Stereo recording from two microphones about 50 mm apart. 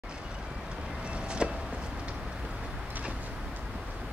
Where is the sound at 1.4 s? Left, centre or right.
Centre.